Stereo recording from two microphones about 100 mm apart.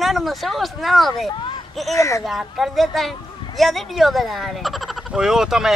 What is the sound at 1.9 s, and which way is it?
Speech, 30° left (ahead or behind).